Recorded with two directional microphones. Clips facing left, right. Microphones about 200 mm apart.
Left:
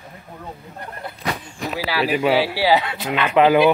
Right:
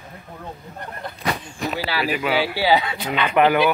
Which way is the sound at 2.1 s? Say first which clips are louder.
Left 5 dB; 35° left (ahead or behind).